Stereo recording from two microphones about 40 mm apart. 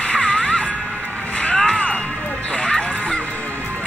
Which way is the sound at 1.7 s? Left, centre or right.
Left.